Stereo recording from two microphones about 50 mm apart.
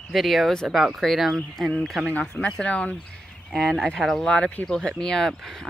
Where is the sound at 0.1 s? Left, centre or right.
Centre.